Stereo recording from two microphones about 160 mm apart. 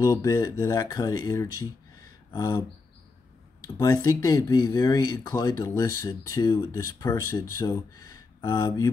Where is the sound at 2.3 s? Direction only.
25° left (ahead or behind).